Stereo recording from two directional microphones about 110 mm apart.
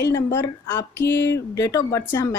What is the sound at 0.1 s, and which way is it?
Speech, 25° left (ahead or behind).